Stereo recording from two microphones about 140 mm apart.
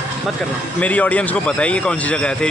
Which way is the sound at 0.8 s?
10° left (ahead or behind).